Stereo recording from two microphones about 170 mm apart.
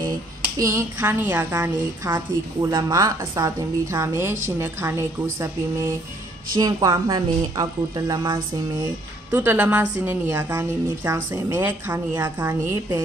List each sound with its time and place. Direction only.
0.6 s a woman's voice: 15° right (ahead or behind)
9.3 s a woman's voice: 10° right (ahead or behind)